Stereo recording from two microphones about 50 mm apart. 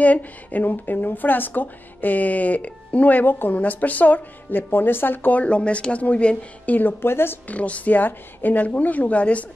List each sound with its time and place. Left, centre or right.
0.0 s speech: left
5.4 s speech: left
7.4 s speech: left